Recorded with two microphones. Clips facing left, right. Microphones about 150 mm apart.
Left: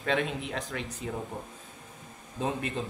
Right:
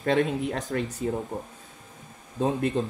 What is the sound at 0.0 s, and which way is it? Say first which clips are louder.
Speech: right 6 dB; 45° right (ahead or behind).